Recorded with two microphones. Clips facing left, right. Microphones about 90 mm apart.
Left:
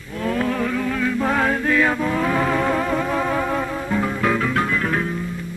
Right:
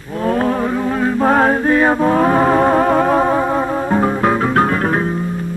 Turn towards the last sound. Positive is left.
turn(degrees=-40)  # may be behind; listen again after turning